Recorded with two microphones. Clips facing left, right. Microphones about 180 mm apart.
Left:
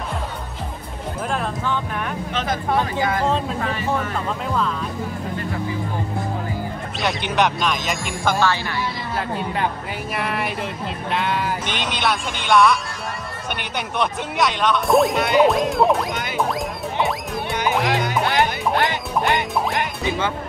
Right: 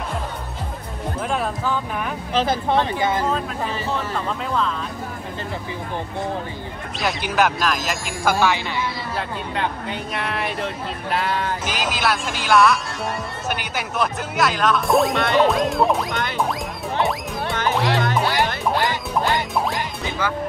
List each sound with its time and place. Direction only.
1.3 s speech: 5° right (ahead or behind)
2.3 s speech: 30° right (ahead or behind)
7.0 s speech: centre (ahead or behind)
8.4 s speech: 15° right (ahead or behind)
10.4 s speech: centre (ahead or behind)
17.6 s music: 15° left (ahead or behind)
18.3 s quack: 20° left (ahead or behind)